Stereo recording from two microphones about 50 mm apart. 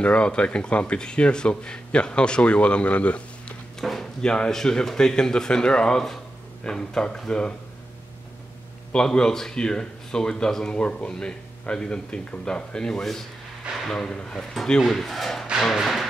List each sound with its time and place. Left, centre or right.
0.0 s speech: left
3.8 s a sound: centre
4.2 s speech: centre
8.9 s speech: centre